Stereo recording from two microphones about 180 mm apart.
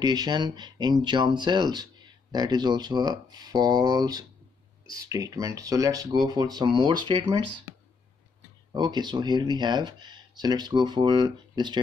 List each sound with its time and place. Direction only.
0.0 s speech: 20° right (ahead or behind)
8.7 s speech: 25° right (ahead or behind)